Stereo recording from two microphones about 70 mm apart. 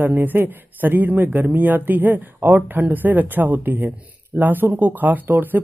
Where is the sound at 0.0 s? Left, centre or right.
Right.